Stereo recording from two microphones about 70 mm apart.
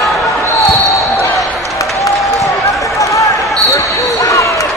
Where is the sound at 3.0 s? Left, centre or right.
Left.